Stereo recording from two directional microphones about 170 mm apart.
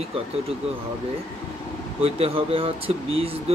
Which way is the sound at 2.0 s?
35° right (ahead or behind).